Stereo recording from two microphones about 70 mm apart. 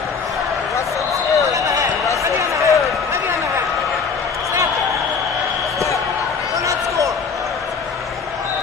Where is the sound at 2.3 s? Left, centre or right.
Right.